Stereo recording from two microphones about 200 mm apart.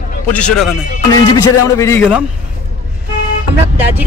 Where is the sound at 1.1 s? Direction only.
15° left (ahead or behind).